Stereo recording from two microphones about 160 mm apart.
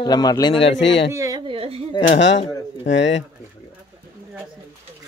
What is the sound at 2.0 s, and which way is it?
Speech, 60° left (ahead or behind).